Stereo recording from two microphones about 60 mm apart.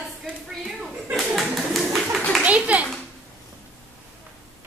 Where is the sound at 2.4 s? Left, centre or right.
Right.